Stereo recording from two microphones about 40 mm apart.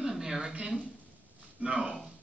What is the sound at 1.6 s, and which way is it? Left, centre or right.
Speech, right.